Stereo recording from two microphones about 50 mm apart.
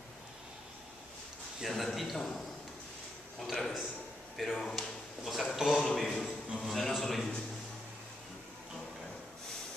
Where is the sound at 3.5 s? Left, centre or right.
Centre.